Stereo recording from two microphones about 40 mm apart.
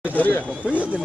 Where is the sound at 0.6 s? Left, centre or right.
Right.